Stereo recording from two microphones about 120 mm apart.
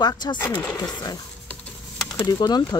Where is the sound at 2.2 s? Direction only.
35° left (ahead or behind).